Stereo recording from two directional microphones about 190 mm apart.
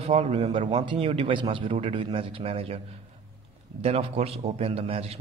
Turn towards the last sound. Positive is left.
turn(degrees=-30)  # may be behind; listen again after turning